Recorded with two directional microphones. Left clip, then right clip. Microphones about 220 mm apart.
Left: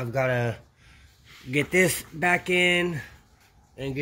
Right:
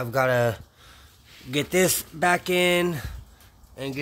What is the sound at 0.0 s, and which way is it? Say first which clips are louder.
Speech: right 4 dB; 30° right (ahead or behind).